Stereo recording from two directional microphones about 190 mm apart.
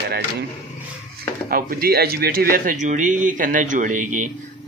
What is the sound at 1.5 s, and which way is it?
A man's voice, 50° right (ahead or behind).